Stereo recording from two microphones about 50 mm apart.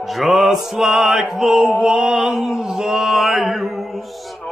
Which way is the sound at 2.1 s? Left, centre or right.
Centre.